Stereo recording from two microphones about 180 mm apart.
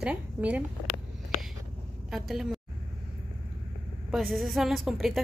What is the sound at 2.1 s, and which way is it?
Speech, centre (ahead or behind).